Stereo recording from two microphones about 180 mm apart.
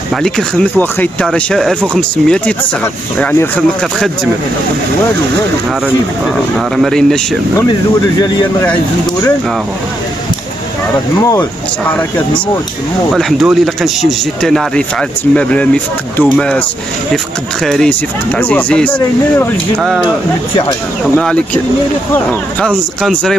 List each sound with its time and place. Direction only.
0.2 s speech: 5° left (ahead or behind)
6.8 s speech: 5° left (ahead or behind)
11.1 s speech: 15° left (ahead or behind)
13.1 s speech: centre (ahead or behind)
17.6 s speech: 5° left (ahead or behind)
21.2 s speech: 5° left (ahead or behind)